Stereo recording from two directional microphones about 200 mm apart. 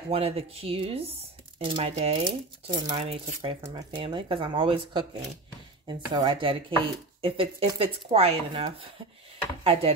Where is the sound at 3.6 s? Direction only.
20° right (ahead or behind).